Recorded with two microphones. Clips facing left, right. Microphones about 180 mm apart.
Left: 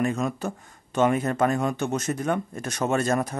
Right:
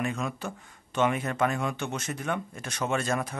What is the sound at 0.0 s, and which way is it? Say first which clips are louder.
Speech: left 6 dB; 40° left (ahead or behind).